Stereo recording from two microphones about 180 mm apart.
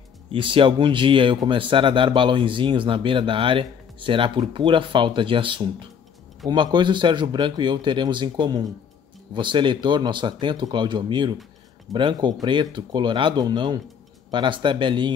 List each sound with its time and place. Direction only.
0.3 s speech: 30° right (ahead or behind)